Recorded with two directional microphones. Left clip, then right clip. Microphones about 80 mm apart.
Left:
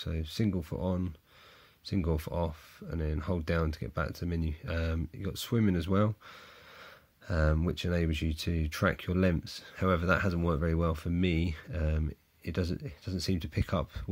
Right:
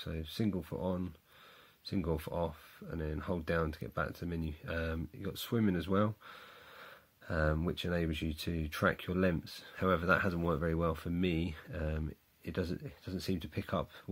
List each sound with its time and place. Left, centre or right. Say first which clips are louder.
0.0 s speech: left 3 dB; left